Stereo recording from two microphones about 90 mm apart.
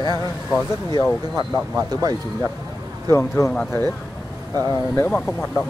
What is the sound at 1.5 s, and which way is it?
Speech, 10° right (ahead or behind).